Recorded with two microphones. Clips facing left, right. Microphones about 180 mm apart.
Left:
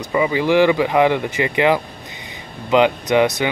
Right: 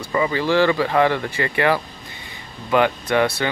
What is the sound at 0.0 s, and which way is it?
Speech, 15° left (ahead or behind).